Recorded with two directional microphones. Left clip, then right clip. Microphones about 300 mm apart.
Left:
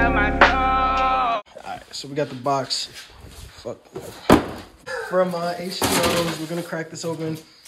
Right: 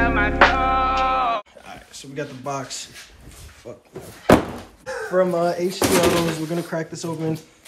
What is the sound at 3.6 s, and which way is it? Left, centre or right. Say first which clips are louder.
Speech: left 6 dB; left.